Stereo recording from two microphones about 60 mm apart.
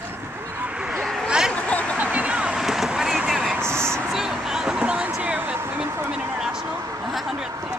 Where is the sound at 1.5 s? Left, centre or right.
Left.